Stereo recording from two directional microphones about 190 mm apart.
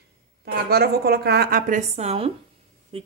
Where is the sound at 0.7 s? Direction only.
55° right (ahead or behind).